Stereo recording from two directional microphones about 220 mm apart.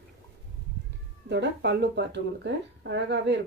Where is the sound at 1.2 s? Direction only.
50° right (ahead or behind).